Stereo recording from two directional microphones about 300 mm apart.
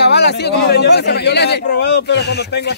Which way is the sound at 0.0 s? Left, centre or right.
Left.